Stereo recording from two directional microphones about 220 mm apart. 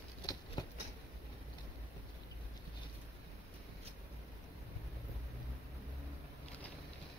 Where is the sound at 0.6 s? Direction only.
20° left (ahead or behind).